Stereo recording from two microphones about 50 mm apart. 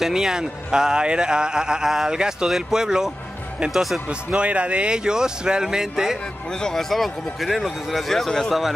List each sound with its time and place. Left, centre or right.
0.0 s speech: centre
4.1 s speech: right
6.6 s speech: centre